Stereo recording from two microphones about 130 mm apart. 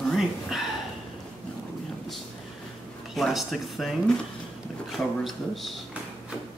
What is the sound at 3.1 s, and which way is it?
Speech, centre (ahead or behind).